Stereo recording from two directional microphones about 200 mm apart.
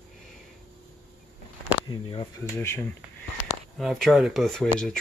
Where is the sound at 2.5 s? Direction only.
10° left (ahead or behind).